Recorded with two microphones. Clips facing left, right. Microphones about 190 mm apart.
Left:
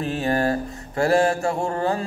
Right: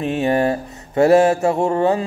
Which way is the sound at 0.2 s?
25° right (ahead or behind).